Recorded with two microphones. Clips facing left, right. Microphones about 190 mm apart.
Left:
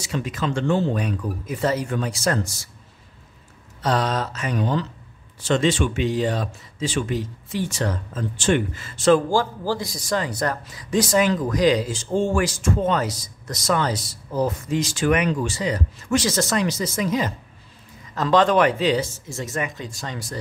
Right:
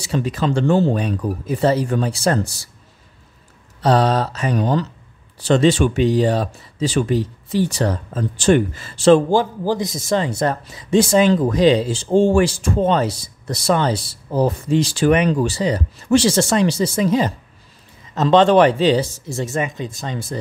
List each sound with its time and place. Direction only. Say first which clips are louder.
0.0 s speech: right 5 dB; 35° right (ahead or behind)
3.8 s speech: right 6 dB; 35° right (ahead or behind)